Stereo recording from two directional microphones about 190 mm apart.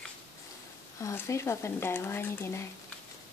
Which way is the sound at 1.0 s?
15° left (ahead or behind).